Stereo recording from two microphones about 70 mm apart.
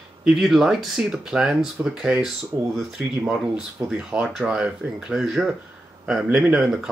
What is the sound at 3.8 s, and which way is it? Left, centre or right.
Speech, centre.